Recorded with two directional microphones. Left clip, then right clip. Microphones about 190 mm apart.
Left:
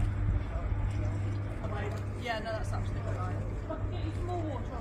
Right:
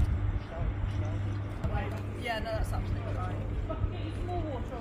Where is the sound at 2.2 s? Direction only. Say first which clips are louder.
Right 1 dB; 35° right (ahead or behind).